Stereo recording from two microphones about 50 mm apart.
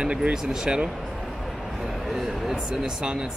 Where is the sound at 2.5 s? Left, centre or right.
Centre.